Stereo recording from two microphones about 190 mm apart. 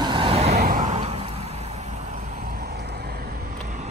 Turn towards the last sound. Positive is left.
turn(degrees=-40)  # may be behind; listen again after turning